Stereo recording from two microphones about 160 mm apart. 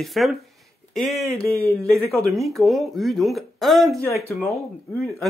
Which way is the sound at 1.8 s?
20° right (ahead or behind).